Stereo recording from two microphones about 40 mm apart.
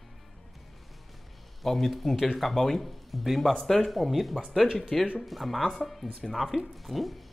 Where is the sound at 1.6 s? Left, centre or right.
Centre.